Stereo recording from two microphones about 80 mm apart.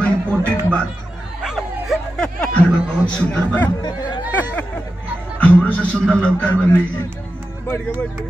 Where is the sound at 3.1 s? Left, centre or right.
Centre.